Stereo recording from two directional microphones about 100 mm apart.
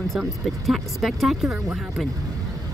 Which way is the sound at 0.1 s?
Centre (ahead or behind).